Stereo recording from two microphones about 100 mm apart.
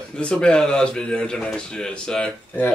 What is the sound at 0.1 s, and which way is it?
A man's voice, 10° left (ahead or behind).